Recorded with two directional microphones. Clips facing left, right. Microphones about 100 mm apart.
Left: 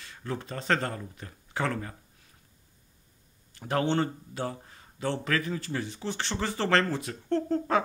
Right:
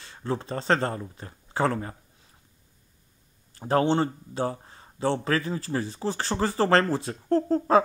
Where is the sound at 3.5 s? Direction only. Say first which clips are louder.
Right 4 dB; 35° right (ahead or behind).